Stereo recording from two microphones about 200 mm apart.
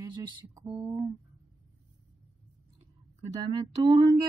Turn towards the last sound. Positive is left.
turn(degrees=-25)  # may be behind; listen again after turning